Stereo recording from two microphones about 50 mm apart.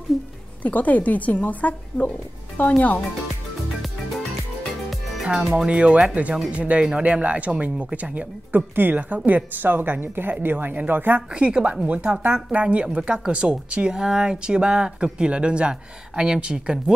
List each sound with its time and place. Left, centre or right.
0.7 s speech: left
5.2 s speech: centre
5.7 s speech: right
11.3 s speech: right